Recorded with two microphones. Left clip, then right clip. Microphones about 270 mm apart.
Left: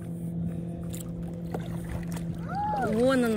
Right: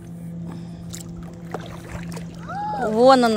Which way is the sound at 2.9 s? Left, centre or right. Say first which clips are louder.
Right 13 dB; centre.